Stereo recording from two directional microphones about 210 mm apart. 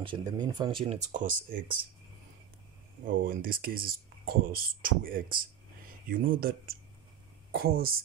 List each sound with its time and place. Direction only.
0.0 s speech: 20° right (ahead or behind)
1.1 s speech: 40° right (ahead or behind)
3.3 s speech: 45° right (ahead or behind)